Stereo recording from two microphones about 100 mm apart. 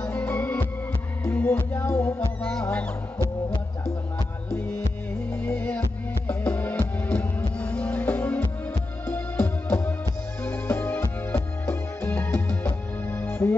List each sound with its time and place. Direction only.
0.0 s organ: 15° left (ahead or behind)
1.2 s music: 15° left (ahead or behind)
4.5 s music: 10° left (ahead or behind)